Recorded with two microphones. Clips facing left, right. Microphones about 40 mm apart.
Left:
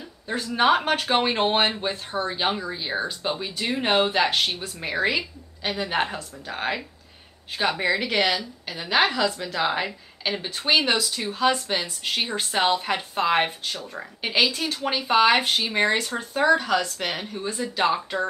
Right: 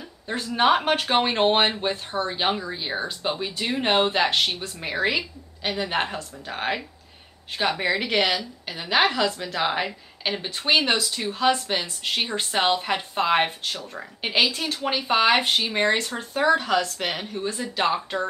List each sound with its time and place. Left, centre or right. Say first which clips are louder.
0.0 s a woman's voice: left 1 dB; centre